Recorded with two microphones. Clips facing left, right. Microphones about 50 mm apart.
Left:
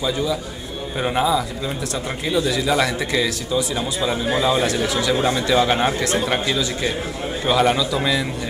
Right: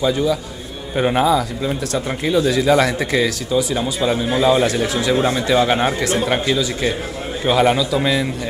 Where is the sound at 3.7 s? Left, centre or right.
Centre.